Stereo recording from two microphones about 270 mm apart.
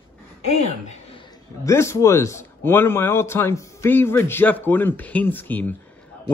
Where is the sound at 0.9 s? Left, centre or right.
Left.